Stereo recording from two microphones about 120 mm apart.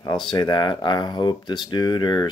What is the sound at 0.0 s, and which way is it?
Speech, 35° left (ahead or behind).